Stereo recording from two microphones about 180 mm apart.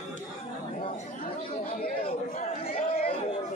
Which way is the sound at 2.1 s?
40° left (ahead or behind).